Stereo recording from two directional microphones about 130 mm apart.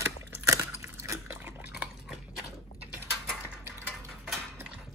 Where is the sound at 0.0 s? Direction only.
20° right (ahead or behind).